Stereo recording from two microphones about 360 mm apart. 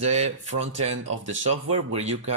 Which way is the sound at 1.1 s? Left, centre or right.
Right.